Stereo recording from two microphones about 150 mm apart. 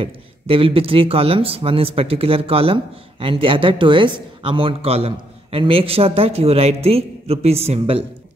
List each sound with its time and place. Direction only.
0.0 s speech: 35° right (ahead or behind)